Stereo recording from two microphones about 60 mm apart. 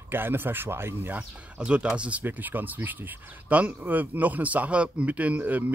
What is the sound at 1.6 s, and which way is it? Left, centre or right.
Speech, centre.